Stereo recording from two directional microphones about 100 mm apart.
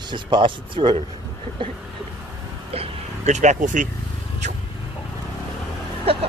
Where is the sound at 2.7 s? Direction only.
80° right.